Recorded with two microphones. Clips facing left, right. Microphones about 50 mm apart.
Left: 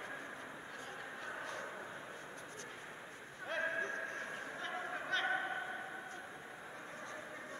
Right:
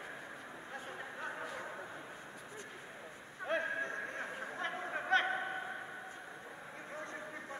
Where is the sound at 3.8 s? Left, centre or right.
Right.